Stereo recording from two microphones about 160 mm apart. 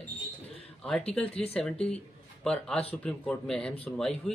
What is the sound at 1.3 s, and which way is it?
Speech, 35° left (ahead or behind).